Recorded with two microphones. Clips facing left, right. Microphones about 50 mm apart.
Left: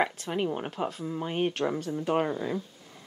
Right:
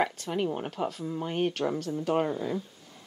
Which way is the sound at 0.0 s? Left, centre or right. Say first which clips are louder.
Even; centre.